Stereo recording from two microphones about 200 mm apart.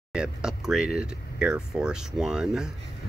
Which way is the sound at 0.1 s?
5° right (ahead or behind).